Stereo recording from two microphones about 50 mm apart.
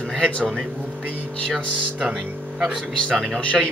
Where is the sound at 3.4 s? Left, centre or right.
Left.